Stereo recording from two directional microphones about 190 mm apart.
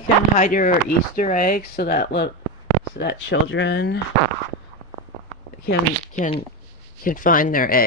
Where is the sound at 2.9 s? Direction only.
65° left (ahead or behind).